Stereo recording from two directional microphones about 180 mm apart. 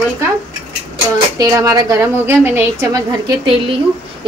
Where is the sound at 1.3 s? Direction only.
20° right (ahead or behind).